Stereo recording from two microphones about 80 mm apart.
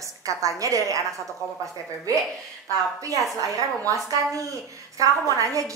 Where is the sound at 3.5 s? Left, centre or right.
Right.